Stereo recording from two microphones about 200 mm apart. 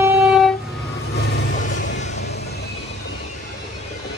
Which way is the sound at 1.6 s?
40° left (ahead or behind).